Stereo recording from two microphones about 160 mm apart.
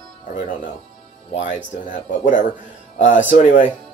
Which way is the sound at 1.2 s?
50° left (ahead or behind).